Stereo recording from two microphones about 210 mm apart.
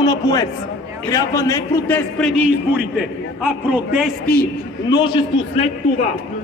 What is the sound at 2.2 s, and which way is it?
A man's voice, centre (ahead or behind).